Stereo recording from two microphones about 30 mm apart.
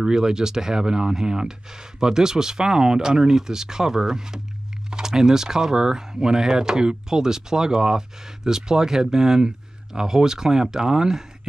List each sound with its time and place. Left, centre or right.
0.0 s speech: centre